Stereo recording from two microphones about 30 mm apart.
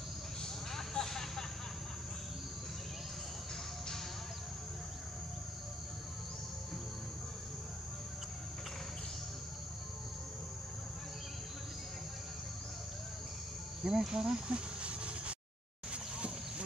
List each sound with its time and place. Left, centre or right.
0.4 s vehicle: centre
13.8 s speech: centre
14.5 s a sound: right